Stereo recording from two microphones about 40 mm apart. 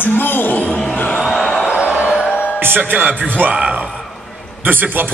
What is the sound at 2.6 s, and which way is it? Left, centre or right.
Speech, right.